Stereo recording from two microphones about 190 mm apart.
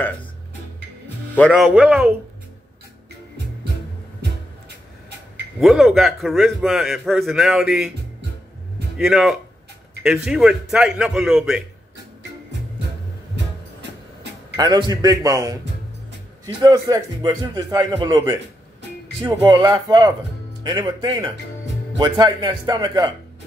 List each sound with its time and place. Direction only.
1.5 s a man's voice: 5° right (ahead or behind)
5.6 s a man's voice: centre (ahead or behind)
8.9 s a man's voice: centre (ahead or behind)
14.6 s a man's voice: 20° right (ahead or behind)
16.6 s a man's voice: 20° right (ahead or behind)